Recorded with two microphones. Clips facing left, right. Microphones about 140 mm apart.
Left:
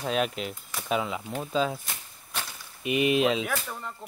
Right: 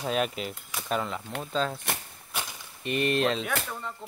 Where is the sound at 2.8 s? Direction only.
5° left (ahead or behind).